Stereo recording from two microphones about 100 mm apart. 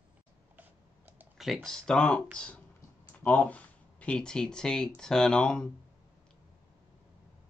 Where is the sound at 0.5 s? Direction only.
20° right (ahead or behind).